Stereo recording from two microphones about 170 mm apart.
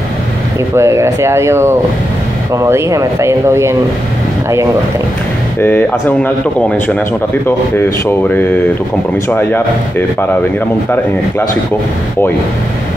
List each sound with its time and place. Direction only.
0.7 s speech: 15° right (ahead or behind)
5.6 s speech: 10° left (ahead or behind)
9.3 s speech: 10° left (ahead or behind)